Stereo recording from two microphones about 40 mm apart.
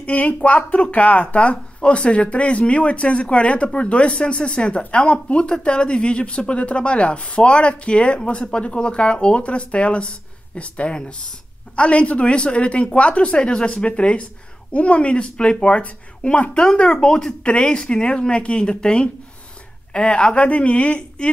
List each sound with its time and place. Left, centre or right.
0.0 s a man's voice: left